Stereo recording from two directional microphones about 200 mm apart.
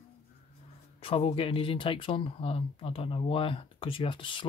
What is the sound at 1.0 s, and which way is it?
Speech, 30° left (ahead or behind).